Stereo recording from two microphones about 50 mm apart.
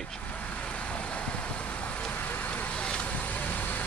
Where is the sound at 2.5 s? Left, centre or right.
Left.